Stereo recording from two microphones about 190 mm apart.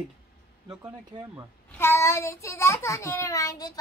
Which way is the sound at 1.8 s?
15° left (ahead or behind).